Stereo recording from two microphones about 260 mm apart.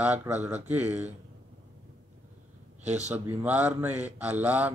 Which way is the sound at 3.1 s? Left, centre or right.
Centre.